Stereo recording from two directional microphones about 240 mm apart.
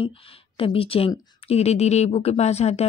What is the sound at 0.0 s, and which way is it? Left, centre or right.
A woman's voice, left.